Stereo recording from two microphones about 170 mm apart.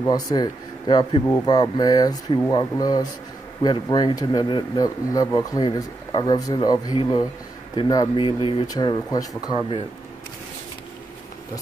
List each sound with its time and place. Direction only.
0.0 s speech: 25° left (ahead or behind)